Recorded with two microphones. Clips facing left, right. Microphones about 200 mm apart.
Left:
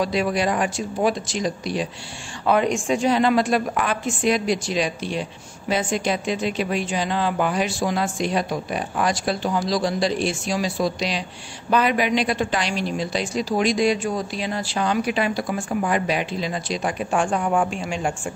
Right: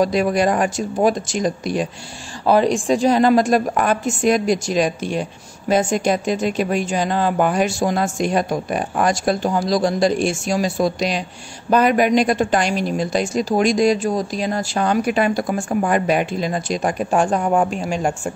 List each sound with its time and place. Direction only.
0.0 s a woman's voice: 45° right (ahead or behind)
2.4 s a woman's voice: 35° right (ahead or behind)